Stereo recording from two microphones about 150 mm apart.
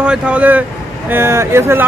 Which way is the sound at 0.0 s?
10° right (ahead or behind).